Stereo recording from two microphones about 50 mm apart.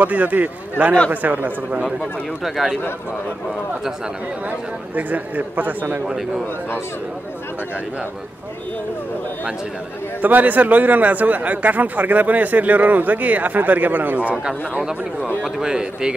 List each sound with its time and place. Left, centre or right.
0.0 s a man's voice: right
2.4 s speech: centre
4.5 s a man's voice: right
6.0 s speech: centre
10.2 s a man's voice: right
14.8 s speech: centre